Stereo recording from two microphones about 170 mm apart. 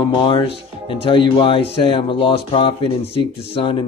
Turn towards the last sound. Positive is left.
turn(degrees=30)  # may be behind; listen again after turning